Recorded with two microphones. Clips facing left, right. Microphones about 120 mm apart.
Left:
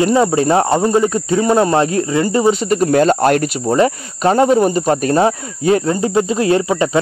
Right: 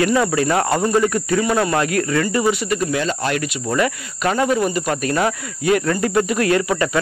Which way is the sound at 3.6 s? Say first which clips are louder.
Left 6 dB; 30° left (ahead or behind).